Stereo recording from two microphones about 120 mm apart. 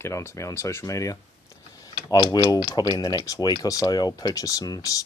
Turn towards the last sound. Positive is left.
turn(degrees=30)  # may be behind; listen again after turning